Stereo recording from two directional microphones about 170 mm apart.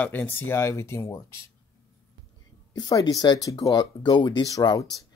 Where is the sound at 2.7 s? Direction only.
25° left (ahead or behind).